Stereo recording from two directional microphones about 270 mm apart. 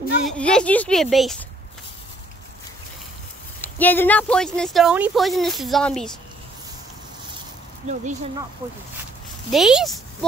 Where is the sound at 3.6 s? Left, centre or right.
Centre.